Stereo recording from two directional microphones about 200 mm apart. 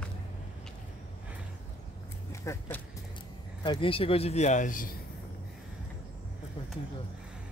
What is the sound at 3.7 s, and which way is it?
A man's voice, 25° left (ahead or behind).